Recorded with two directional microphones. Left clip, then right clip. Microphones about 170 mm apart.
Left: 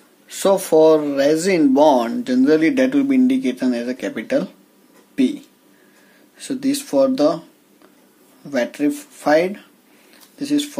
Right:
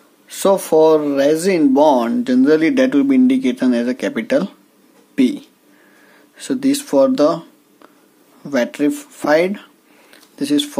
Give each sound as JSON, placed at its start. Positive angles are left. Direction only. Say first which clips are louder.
{"t": 0.3, "sound": "speech", "louder": "right 1 dB", "side_deg": -20}
{"t": 8.5, "sound": "speech", "louder": "right 3 dB", "side_deg": -30}